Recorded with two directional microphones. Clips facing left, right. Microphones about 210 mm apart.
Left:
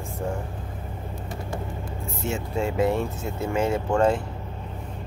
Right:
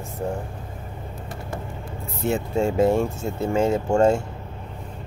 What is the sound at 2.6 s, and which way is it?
Speech, 45° right (ahead or behind).